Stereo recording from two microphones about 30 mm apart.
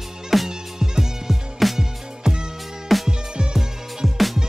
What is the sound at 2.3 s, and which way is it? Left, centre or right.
Music, centre.